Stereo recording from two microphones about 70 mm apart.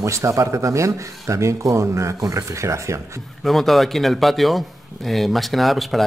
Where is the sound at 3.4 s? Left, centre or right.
Centre.